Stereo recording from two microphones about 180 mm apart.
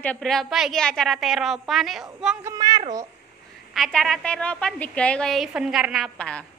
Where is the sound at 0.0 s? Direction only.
5° left (ahead or behind).